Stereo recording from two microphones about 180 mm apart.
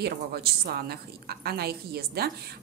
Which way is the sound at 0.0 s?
65° right (ahead or behind).